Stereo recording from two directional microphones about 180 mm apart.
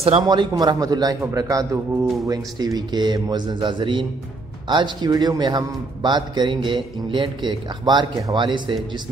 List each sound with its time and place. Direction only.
0.0 s speech: 30° right (ahead or behind)